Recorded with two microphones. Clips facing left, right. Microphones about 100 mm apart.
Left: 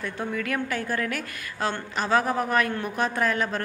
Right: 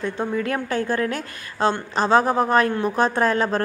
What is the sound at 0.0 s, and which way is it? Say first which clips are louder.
A woman's voice: right 6 dB; 30° right (ahead or behind).